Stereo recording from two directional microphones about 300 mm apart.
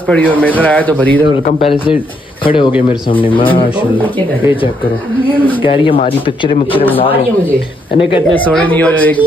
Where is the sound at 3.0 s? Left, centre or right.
Centre.